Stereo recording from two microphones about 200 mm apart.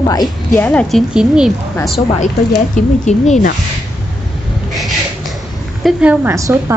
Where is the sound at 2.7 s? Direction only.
35° left (ahead or behind).